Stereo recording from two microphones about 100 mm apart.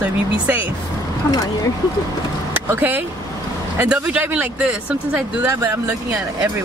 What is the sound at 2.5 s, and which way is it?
Speech, 20° right (ahead or behind).